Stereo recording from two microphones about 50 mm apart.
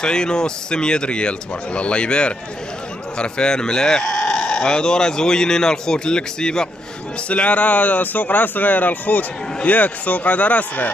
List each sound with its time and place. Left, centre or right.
0.0 s a man's voice: centre
7.2 s speech: left